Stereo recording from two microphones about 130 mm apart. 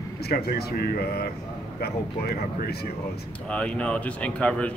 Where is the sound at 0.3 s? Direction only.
90° left.